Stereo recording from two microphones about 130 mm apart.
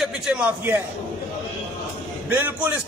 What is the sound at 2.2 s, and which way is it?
Speech, 15° right (ahead or behind).